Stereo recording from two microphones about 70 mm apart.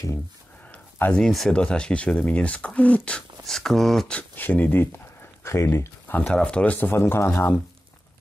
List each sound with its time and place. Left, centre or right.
0.7 s a sound: left
1.2 s speech: centre
1.5 s speech: centre
3.4 s speech: centre
4.1 s speech: left
4.9 s a sound: left
6.3 s speech: centre
6.9 s speech: left